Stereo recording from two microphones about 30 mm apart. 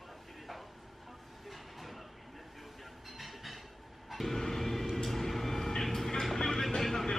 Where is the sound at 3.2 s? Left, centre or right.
Centre.